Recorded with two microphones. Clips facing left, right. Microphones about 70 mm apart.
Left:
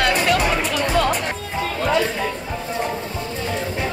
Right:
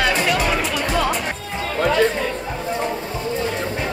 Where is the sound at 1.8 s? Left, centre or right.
Right.